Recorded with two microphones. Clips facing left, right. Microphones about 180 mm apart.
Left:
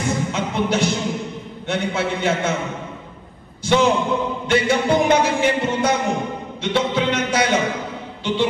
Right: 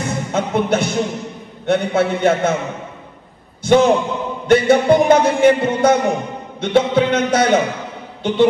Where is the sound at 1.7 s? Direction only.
55° right (ahead or behind).